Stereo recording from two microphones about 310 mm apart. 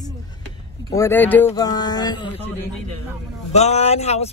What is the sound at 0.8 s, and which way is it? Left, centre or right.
Speech, centre.